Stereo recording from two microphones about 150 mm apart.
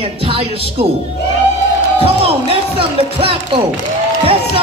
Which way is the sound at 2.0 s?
40° right (ahead or behind).